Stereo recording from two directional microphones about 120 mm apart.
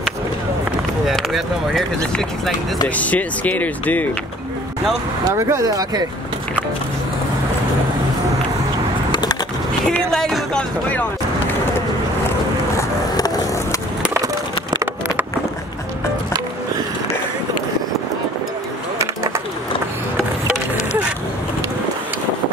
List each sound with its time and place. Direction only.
1.0 s speech: centre (ahead or behind)
2.9 s speech: 10° left (ahead or behind)
5.3 s speech: 25° right (ahead or behind)
9.1 s skateboard: 35° left (ahead or behind)
10.1 s speech: 5° left (ahead or behind)
12.7 s skateboard: 30° left (ahead or behind)
14.1 s a sound: 25° right (ahead or behind)
18.9 s skateboard: 25° right (ahead or behind)